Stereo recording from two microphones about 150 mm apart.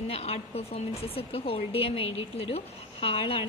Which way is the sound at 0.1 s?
40° left (ahead or behind).